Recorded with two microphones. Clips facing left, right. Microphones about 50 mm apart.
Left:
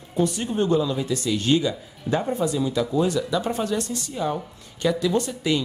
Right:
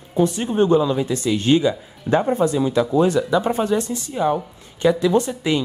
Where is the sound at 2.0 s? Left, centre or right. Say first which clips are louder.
Right 6 dB; right.